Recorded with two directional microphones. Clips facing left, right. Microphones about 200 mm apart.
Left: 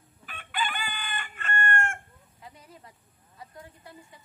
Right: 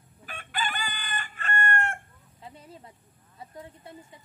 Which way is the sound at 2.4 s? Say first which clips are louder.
Right 3 dB; 30° right (ahead or behind).